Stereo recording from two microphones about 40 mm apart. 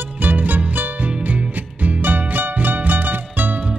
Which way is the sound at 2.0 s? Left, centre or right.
Right.